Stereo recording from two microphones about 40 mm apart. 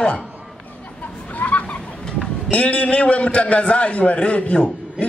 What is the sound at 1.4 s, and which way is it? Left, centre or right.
Chicken, left.